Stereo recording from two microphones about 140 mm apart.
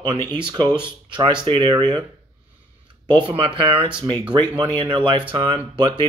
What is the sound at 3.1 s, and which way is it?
Speech, 40° right (ahead or behind).